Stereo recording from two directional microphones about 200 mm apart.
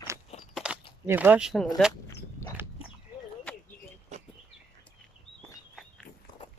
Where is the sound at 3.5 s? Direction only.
5° left (ahead or behind).